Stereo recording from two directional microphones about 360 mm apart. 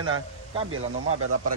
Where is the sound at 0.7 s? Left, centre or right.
Right.